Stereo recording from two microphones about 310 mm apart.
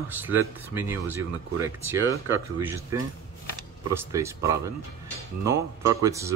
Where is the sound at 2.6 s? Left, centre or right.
Centre.